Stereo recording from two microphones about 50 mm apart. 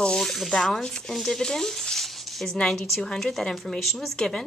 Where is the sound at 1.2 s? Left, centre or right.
Centre.